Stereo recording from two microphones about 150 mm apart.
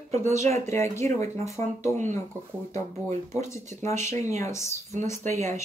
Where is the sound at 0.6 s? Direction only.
20° left (ahead or behind).